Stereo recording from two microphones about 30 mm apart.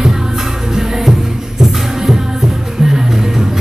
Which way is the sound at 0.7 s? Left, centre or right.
Centre.